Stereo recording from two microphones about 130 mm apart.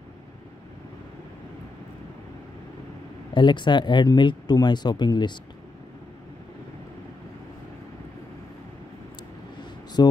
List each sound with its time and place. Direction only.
3.3 s speech: 35° left (ahead or behind)
10.0 s speech: 30° left (ahead or behind)